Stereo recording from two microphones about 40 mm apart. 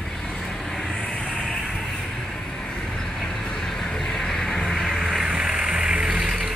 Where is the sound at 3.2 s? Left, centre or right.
Centre.